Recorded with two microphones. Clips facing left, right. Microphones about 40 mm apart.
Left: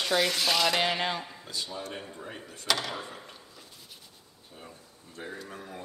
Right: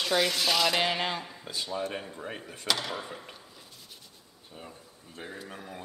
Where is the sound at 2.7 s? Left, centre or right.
Centre.